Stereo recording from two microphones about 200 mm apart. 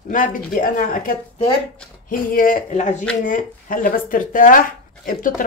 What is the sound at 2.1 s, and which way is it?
Speech, 45° left (ahead or behind).